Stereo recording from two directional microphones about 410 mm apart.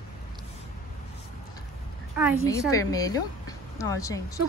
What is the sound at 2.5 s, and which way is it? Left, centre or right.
A woman's voice, centre.